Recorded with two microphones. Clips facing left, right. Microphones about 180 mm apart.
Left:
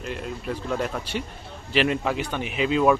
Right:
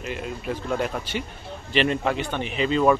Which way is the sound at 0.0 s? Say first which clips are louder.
Right 1 dB; 5° right (ahead or behind).